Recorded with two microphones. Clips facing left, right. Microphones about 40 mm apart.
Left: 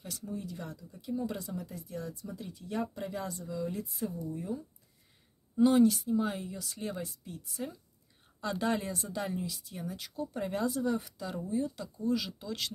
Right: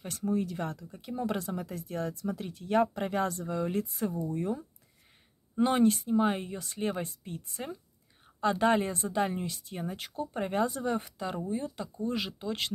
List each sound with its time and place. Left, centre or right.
0.0 s speech: right
5.6 s speech: right